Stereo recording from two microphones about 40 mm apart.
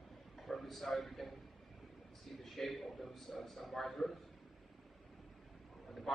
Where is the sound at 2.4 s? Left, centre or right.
Centre.